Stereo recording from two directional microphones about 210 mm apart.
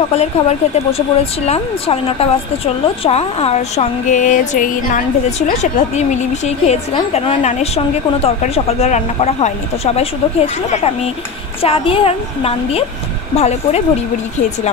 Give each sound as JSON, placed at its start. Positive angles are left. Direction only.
{"t": 0.1, "sound": "a woman's voice", "side_deg": 30}